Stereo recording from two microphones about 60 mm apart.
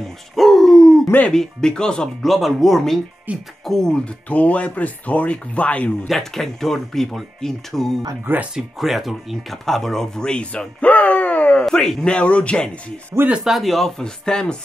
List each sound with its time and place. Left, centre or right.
0.0 s dog: centre
1.3 s speech: centre
2.2 s speech: centre
3.3 s speech: right
3.6 s speech: centre
6.0 s speech: centre; by 11.6 s left
11.6 s speech: centre
12.0 s speech: centre
13.4 s speech: centre